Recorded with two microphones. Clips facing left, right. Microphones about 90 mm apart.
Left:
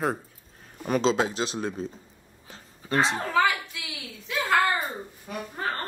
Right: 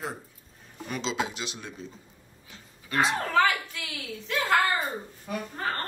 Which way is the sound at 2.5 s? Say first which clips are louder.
Left 5 dB; 35° left (ahead or behind).